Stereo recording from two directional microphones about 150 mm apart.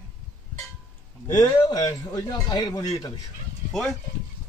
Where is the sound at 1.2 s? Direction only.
25° left (ahead or behind).